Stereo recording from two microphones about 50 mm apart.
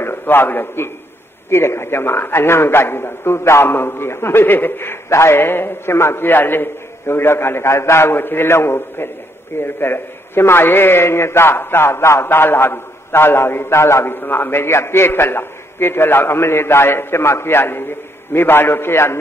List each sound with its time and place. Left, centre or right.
0.0 s a man's voice: left
1.5 s a man's voice: left
5.1 s a man's voice: left
8.1 s a man's voice: left
13.7 s a man's voice: left
14.0 s a man's voice: left